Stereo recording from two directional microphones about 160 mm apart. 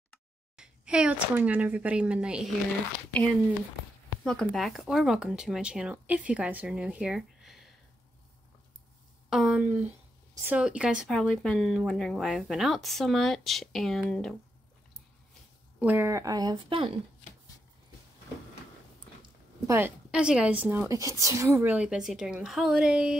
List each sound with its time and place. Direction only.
0.6 s speech: 5° right (ahead or behind)
4.2 s speech: 5° left (ahead or behind)
9.3 s speech: 5° right (ahead or behind)
15.8 s speech: 15° right (ahead or behind); by 16.9 s 35° right (ahead or behind)
19.2 s speech: 20° right (ahead or behind)